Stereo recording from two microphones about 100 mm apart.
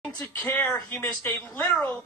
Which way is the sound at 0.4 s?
25° left (ahead or behind).